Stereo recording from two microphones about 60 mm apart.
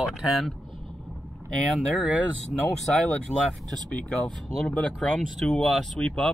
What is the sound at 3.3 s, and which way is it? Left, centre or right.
Speech, left.